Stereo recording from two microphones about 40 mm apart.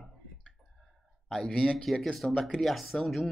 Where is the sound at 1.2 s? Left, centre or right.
Centre.